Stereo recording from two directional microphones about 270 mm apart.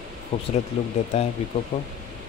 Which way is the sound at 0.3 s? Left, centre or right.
Left.